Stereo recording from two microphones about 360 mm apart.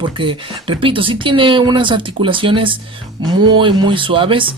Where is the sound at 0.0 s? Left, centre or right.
Centre.